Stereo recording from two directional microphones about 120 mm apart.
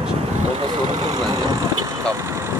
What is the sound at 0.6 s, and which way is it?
Speech, 40° right (ahead or behind).